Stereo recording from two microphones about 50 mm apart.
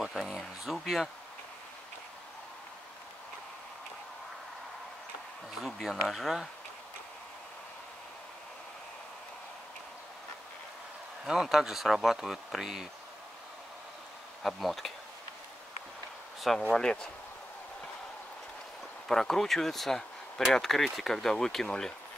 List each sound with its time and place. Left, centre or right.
0.0 s a sound: centre
5.6 s speech: centre
11.2 s speech: centre
14.4 s speech: centre
16.7 s speech: centre
19.0 s speech: centre